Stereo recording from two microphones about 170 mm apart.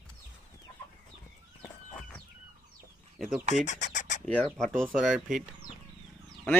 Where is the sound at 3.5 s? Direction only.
45° left (ahead or behind).